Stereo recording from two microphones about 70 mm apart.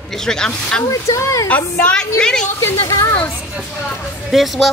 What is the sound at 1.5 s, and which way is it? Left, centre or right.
Speech, centre.